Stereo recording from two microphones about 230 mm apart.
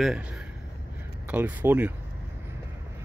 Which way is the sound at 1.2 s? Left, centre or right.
Centre.